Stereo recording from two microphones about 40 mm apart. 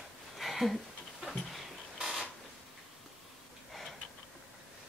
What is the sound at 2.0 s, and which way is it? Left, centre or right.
Creak, centre.